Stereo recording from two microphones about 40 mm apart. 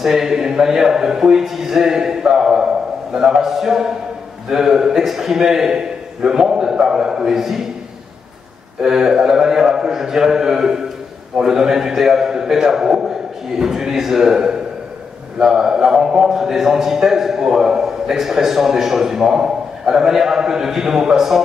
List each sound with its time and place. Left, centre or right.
0.0 s a man's voice: centre
8.8 s a man's voice: centre